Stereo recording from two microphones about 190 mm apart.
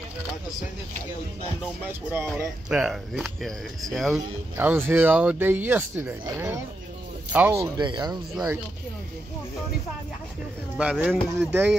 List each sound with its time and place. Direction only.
1.9 s speech: 10° right (ahead or behind)
4.6 s speech: 10° right (ahead or behind)
10.8 s speech: 5° right (ahead or behind)